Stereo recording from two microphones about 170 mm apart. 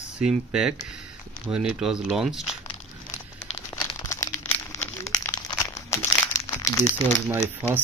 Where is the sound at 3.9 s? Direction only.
20° left (ahead or behind).